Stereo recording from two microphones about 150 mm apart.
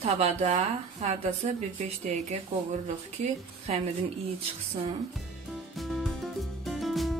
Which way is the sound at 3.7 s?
45° right (ahead or behind).